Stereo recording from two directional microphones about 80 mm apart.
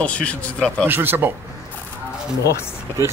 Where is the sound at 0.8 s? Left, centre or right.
Right.